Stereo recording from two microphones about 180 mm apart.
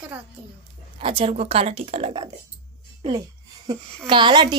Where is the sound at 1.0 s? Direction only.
30° right (ahead or behind).